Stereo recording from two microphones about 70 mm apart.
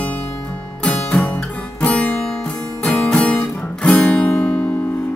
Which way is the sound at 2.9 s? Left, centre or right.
Centre.